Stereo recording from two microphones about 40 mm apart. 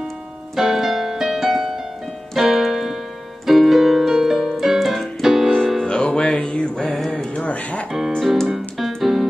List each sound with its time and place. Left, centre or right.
0.6 s music: centre
2.5 s keyboard: centre
5.5 s music: centre
5.9 s music: left
6.8 s music: centre
7.3 s music: left
8.2 s keyboard: centre